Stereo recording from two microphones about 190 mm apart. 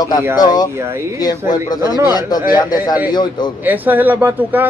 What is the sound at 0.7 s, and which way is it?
Speech, 15° right (ahead or behind).